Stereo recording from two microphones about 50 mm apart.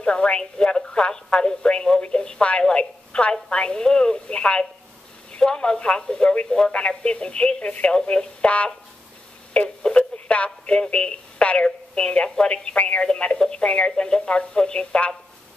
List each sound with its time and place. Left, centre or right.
0.0 s speech: centre
9.8 s speech: left